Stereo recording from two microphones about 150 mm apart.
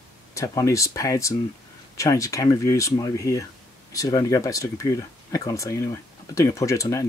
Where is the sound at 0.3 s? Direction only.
20° left (ahead or behind).